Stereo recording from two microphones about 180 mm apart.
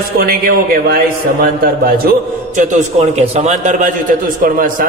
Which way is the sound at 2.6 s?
40° right (ahead or behind).